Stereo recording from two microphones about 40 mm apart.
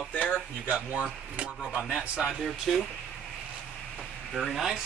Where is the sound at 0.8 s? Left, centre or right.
Right.